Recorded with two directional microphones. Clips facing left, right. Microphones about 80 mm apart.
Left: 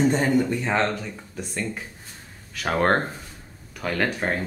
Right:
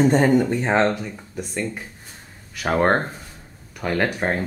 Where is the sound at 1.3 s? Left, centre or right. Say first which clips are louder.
Right 3 dB; centre.